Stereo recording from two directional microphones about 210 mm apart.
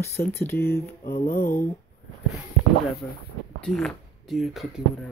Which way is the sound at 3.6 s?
5° left (ahead or behind).